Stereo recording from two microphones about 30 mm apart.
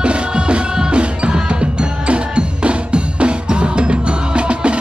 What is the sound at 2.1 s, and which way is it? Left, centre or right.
Drum, right.